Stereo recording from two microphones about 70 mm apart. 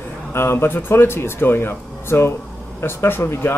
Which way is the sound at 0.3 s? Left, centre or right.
Left.